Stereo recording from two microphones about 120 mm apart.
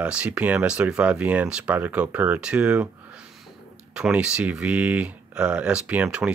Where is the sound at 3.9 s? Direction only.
5° right (ahead or behind).